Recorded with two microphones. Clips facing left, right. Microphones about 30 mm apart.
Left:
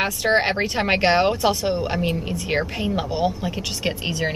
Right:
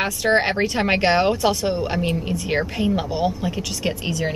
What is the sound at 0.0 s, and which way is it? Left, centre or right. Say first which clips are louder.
A woman's voice: right 1 dB; centre.